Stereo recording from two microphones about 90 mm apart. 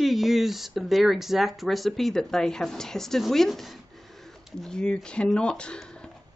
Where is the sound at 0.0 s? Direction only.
Centre (ahead or behind).